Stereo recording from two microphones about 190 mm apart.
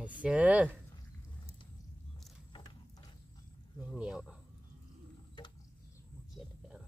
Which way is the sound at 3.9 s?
5° right (ahead or behind).